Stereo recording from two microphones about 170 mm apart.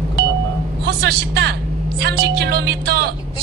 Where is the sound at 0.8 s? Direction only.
70° right (ahead or behind).